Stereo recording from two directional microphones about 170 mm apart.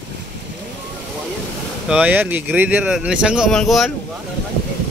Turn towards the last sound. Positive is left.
turn(degrees=0)  # may be behind; listen again after turning